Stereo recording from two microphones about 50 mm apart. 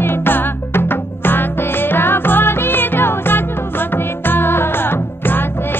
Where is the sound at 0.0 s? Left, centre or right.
Left.